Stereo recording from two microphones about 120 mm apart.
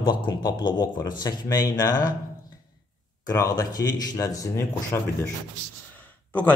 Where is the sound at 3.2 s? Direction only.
30° left (ahead or behind).